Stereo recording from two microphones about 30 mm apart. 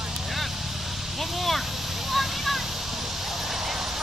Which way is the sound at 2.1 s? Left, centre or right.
Centre.